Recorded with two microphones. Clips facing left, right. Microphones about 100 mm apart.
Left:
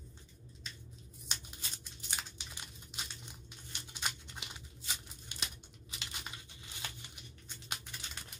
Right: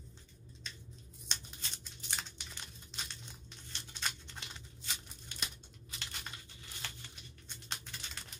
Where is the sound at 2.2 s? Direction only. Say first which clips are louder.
Even; 10° left (ahead or behind).